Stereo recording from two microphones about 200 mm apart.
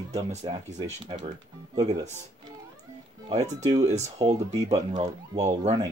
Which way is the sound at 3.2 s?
35° right (ahead or behind).